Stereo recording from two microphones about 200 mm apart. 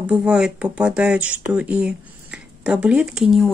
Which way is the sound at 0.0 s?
5° right (ahead or behind).